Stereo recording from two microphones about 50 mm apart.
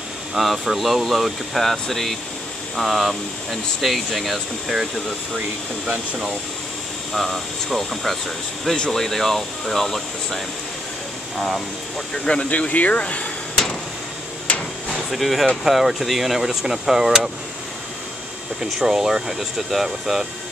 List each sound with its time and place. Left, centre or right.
0.4 s speech: centre
7.1 s speech: centre
12.3 s speech: left
14.5 s hammer: left
14.9 s a sound: centre
15.6 s speech: centre
18.6 s speech: centre